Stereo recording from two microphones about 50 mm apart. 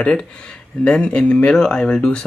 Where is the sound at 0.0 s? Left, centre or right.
Centre.